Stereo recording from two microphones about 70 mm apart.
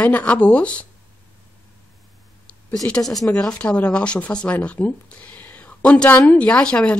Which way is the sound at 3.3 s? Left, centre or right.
Centre.